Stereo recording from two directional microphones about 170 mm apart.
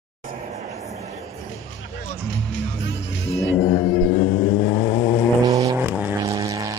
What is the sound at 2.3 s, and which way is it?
Music, 90° left.